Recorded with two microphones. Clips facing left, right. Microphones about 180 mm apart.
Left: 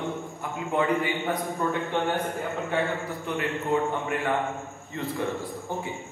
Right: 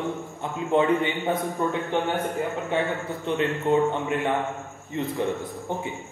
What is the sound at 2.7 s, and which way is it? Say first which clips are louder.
A man's voice: right 1 dB; 25° right (ahead or behind).